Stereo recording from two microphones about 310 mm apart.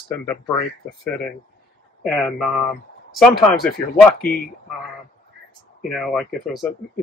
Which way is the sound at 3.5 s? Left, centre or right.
Left.